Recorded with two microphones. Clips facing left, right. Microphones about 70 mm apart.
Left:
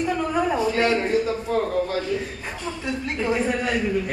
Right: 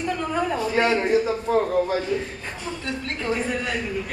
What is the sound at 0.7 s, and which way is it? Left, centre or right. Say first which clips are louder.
A man's voice: right 1 dB; centre.